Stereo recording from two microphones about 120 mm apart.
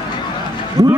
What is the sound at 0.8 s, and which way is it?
Speech, 30° right (ahead or behind).